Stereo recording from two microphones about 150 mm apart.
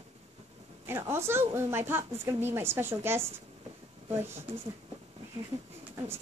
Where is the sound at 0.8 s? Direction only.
15° right (ahead or behind).